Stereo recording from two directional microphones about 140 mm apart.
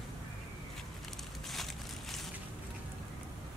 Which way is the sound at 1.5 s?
Centre (ahead or behind).